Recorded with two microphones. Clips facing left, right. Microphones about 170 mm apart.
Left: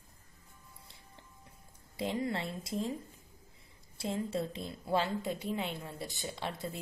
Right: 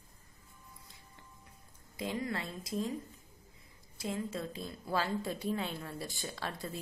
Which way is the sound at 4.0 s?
30° left (ahead or behind).